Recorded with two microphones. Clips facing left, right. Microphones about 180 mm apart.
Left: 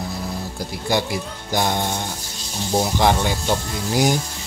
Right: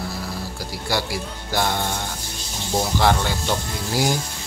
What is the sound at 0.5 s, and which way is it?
Speech, 20° left (ahead or behind).